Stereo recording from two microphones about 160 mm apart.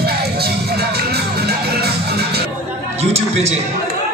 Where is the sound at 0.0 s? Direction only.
80° right.